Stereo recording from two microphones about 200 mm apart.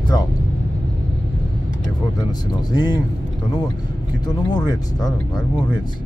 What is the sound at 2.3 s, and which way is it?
Speech, 20° left (ahead or behind).